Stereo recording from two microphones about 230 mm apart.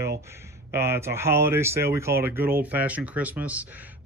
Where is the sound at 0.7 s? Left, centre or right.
Centre.